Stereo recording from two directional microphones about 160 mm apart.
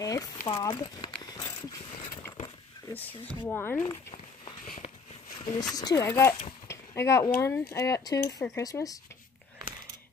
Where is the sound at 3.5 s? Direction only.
10° left (ahead or behind).